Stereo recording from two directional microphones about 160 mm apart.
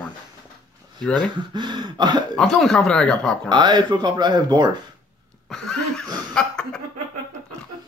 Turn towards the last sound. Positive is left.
turn(degrees=5)  # may be behind; listen again after turning